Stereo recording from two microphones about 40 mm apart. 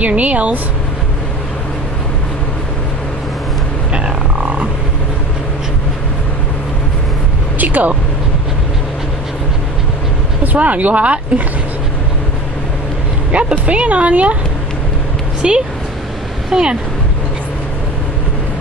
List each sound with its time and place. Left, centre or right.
0.0 s speech: right
7.5 s a sound: right
10.4 s speech: right
13.3 s speech: right
15.4 s speech: centre